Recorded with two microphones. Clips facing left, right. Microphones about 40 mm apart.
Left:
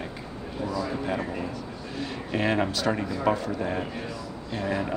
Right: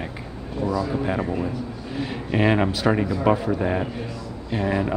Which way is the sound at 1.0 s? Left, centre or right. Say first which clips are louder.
Right 5 dB; centre.